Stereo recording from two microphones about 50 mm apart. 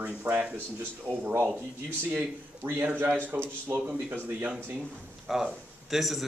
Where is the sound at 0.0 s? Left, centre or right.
Right.